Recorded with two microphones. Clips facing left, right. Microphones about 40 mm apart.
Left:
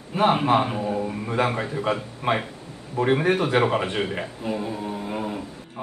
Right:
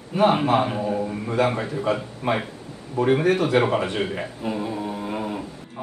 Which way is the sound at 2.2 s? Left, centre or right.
Left.